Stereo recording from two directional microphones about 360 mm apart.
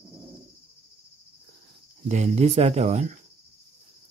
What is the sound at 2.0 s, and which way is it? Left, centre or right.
Speech, centre.